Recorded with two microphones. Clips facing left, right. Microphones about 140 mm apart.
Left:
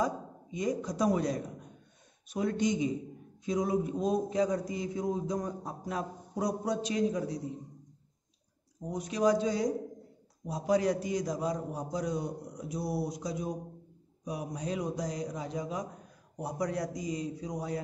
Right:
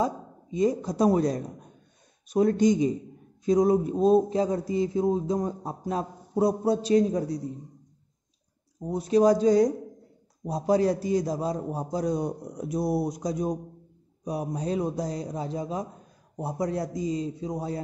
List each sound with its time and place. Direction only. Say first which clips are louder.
0.0 s a man's voice: right 4 dB; 30° right (ahead or behind)
8.8 s a man's voice: right 7 dB; 30° right (ahead or behind)
12.2 s a man's voice: right 6 dB; 50° right (ahead or behind); by 17.7 s 25° right (ahead or behind)